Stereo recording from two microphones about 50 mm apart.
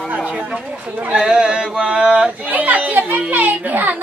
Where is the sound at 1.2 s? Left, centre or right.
Centre; by 4.0 s right.